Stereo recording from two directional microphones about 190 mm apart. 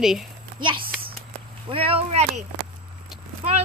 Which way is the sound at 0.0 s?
Centre (ahead or behind).